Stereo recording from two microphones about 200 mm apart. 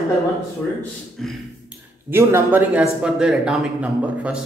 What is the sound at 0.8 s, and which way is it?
Speech, centre (ahead or behind).